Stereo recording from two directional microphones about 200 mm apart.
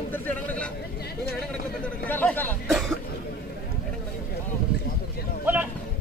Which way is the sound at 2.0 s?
10° left (ahead or behind).